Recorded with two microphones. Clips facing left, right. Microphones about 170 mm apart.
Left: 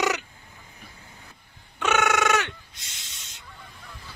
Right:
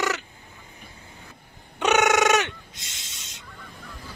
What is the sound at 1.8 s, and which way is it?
Owl, 20° right (ahead or behind).